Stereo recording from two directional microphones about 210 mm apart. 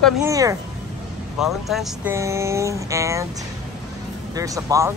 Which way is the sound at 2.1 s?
15° right (ahead or behind).